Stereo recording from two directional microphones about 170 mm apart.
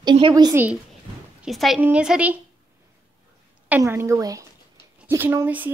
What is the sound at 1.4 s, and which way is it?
A woman's voice, centre (ahead or behind).